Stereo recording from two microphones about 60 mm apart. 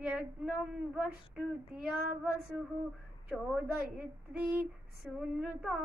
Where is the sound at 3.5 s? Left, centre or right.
Right.